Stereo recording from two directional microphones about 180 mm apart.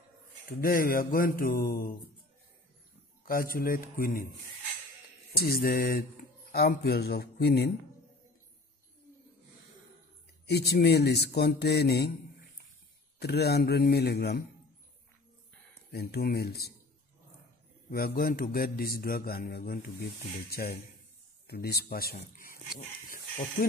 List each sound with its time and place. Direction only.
0.6 s speech: 55° left (ahead or behind)
3.3 s speech: 55° left (ahead or behind)
5.3 s a man's voice: 55° left (ahead or behind)
10.4 s a man's voice: 65° left (ahead or behind)
13.2 s a man's voice: 65° left (ahead or behind)
15.9 s a man's voice: 60° left (ahead or behind)
17.8 s a man's voice: 55° left (ahead or behind)
23.0 s a sound: 50° left (ahead or behind)